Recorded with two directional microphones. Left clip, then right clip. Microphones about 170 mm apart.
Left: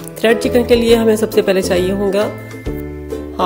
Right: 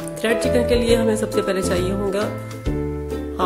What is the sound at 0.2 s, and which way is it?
Speech, 25° left (ahead or behind).